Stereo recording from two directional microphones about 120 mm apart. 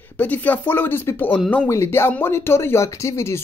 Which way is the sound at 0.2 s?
15° left (ahead or behind).